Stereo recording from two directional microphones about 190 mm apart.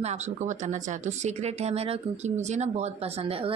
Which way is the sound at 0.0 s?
35° right (ahead or behind).